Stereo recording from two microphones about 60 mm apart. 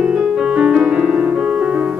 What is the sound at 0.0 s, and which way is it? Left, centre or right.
Music, centre.